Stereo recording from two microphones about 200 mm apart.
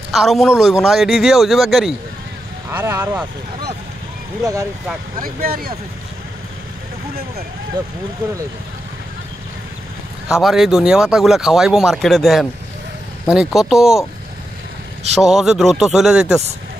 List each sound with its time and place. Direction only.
0.1 s speech: centre (ahead or behind)
2.7 s speech: 10° right (ahead or behind)
5.2 s speech: 45° right (ahead or behind)
10.2 s speech: 5° right (ahead or behind)
15.1 s speech: 5° right (ahead or behind)